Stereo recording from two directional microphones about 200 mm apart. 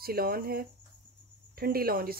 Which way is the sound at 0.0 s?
50° right (ahead or behind).